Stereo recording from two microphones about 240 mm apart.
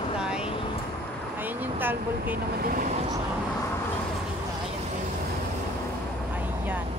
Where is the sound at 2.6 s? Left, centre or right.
Right.